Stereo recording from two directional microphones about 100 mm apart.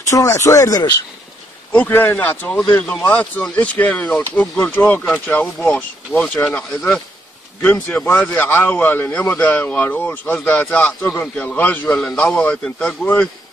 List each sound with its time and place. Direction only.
0.1 s speech: 30° left (ahead or behind)
1.7 s speech: 20° left (ahead or behind)